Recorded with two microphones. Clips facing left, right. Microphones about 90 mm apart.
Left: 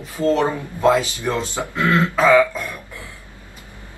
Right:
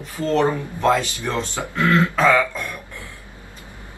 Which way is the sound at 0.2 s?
10° left (ahead or behind).